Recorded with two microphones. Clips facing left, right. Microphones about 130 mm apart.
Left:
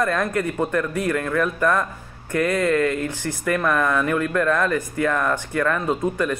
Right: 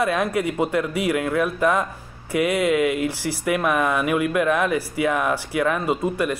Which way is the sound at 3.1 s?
90° right.